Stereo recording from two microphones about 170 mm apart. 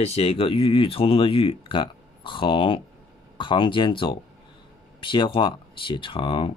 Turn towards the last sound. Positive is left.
turn(degrees=30)  # may be behind; listen again after turning